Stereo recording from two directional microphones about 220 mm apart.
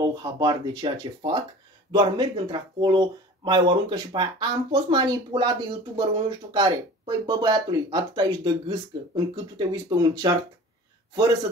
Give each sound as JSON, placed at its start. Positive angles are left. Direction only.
{"t": 0.0, "sound": "speech", "side_deg": -20}